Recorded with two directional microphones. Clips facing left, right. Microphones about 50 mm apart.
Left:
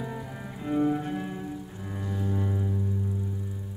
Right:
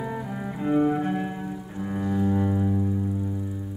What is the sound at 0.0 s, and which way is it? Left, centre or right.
Cello, right.